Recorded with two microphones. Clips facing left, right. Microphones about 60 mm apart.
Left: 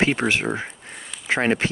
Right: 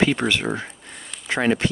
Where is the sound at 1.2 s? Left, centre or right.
Left.